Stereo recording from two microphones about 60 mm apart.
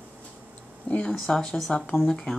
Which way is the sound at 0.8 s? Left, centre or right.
Left.